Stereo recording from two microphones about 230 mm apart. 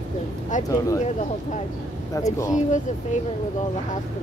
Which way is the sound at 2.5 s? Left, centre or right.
Left.